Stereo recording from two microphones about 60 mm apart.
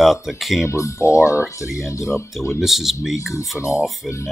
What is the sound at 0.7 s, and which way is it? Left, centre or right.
Speech, left.